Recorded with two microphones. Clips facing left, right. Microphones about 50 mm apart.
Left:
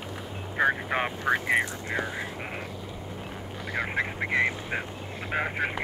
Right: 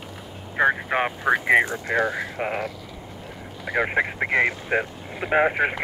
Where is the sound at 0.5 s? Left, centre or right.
Centre.